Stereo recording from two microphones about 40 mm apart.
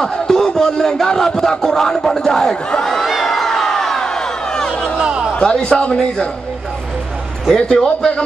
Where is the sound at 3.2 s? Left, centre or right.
Centre.